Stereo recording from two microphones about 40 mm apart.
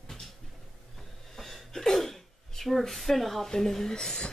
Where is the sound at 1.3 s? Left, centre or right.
Centre.